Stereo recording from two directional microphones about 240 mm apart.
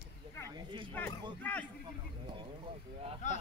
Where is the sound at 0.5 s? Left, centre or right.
Centre.